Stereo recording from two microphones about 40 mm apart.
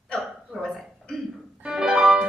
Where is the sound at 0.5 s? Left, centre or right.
Centre.